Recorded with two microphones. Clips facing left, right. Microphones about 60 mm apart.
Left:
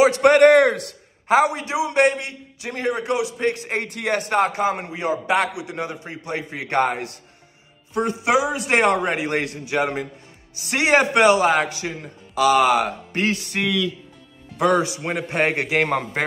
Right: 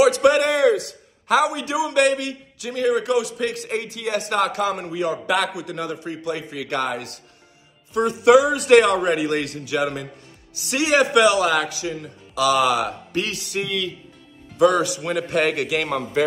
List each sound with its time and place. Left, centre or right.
0.0 s a man's voice: left
14.8 s a man's voice: left